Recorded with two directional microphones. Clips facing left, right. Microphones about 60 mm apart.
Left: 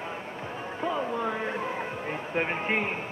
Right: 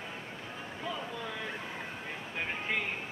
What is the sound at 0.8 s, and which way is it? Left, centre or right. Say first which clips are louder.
A man's voice: left 10 dB; left.